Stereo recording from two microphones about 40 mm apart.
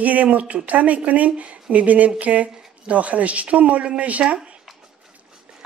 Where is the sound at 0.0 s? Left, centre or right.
Right.